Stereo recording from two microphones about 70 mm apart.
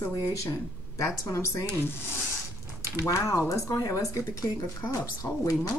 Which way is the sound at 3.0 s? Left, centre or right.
Left.